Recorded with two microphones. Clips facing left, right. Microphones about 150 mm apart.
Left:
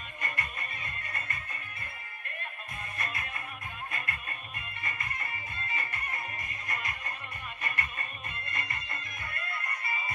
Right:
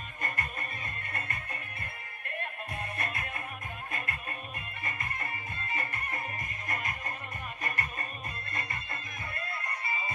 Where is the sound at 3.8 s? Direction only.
40° right (ahead or behind).